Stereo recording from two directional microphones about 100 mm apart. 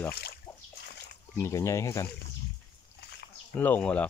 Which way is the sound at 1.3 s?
30° left (ahead or behind).